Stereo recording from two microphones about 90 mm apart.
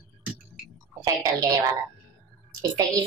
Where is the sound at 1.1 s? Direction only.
40° right (ahead or behind).